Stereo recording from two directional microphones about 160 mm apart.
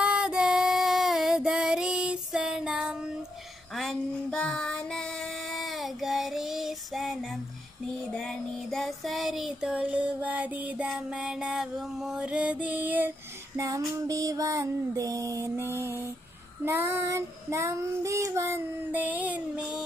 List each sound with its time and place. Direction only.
0.0 s female singing: 5° right (ahead or behind)
3.7 s child singing: centre (ahead or behind)
13.6 s music: 20° right (ahead or behind)
16.6 s child singing: 15° right (ahead or behind)